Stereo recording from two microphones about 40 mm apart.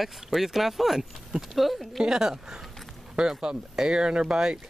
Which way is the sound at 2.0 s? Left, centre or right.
Centre.